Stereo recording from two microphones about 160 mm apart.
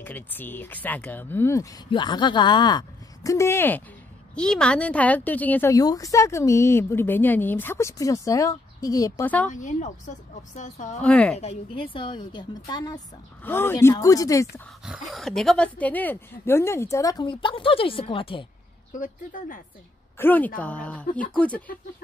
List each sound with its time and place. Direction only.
0.0 s a woman's voice: 10° left (ahead or behind)
1.9 s a woman's voice: 30° left (ahead or behind)
9.2 s a woman's voice: 10° left (ahead or behind)
9.5 s a woman's voice: 50° left (ahead or behind)
11.0 s a woman's voice: 10° left (ahead or behind)
11.3 s speech: 35° left (ahead or behind)
13.4 s a woman's voice: 15° left (ahead or behind)
14.9 s speech: centre (ahead or behind); by 18.4 s 35° left (ahead or behind)
18.9 s speech: 55° left (ahead or behind)
20.2 s a woman's voice: 10° left (ahead or behind)